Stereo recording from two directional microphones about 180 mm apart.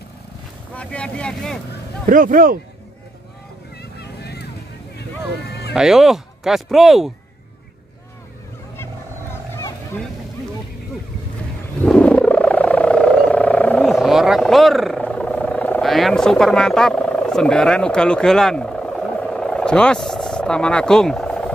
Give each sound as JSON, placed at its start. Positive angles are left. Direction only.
{"t": 0.7, "sound": "speech", "side_deg": 5}
{"t": 2.0, "sound": "speech", "side_deg": -50}
{"t": 4.0, "sound": "vehicle", "side_deg": 65}
{"t": 5.7, "sound": "speech", "side_deg": 0}
{"t": 11.8, "sound": "vehicle", "side_deg": 5}